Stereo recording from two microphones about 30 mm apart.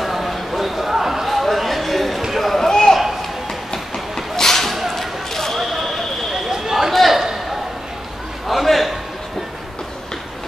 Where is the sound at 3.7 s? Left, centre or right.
Centre.